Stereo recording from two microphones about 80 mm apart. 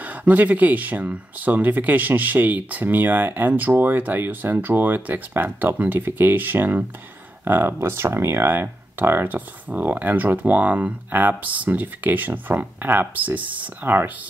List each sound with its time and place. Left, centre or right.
0.0 s speech: centre